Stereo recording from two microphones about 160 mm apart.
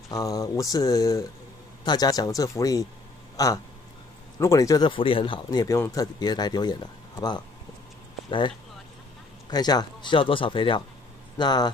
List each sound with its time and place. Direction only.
0.1 s speech: 20° left (ahead or behind)